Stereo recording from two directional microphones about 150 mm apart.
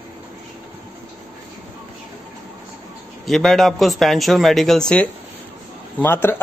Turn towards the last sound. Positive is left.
turn(degrees=15)  # may be behind; listen again after turning